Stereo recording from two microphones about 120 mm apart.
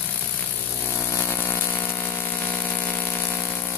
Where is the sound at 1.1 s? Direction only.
20° left (ahead or behind).